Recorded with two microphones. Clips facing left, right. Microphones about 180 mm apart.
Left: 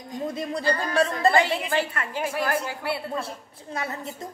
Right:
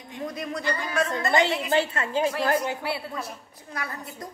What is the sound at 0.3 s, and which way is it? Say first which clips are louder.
Music: left 4 dB; 30° left (ahead or behind).